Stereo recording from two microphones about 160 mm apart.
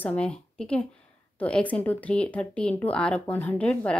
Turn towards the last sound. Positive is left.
turn(degrees=5)  # may be behind; listen again after turning